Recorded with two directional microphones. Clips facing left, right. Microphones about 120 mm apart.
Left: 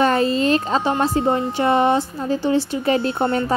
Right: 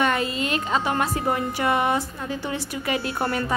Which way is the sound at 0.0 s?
30° left (ahead or behind).